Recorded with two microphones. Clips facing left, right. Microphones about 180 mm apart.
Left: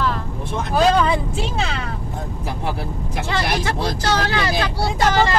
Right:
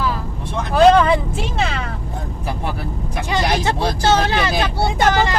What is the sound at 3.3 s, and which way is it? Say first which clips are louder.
Vehicle: right 4 dB; 20° right (ahead or behind).